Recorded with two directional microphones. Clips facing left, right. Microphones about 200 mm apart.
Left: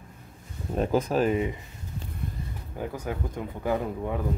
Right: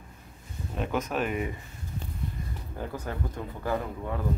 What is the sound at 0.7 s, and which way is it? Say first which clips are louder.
Speech: left 5 dB; 35° left (ahead or behind).